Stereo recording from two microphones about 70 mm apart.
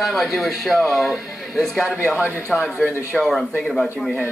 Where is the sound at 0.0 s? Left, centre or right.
Centre.